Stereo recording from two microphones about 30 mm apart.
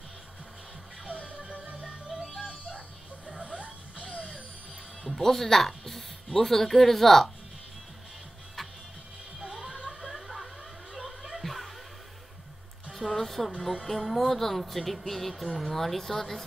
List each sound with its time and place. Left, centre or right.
1.7 s music: right
3.3 s a sound: right
5.0 s speech: centre
8.6 s music: centre
10.0 s a sound: centre
11.4 s music: centre
12.9 s music: centre
13.8 s speech: centre